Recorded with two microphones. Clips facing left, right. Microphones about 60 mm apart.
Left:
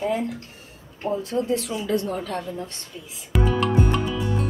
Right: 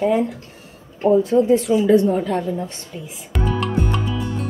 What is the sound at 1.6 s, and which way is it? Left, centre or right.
Speech, centre.